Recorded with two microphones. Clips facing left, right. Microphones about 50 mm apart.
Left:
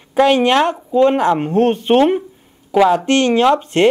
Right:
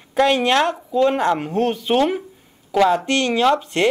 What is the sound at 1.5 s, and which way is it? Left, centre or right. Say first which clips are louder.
Speech: left 6 dB; left.